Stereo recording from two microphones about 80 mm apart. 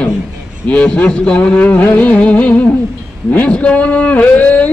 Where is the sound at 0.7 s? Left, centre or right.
Centre.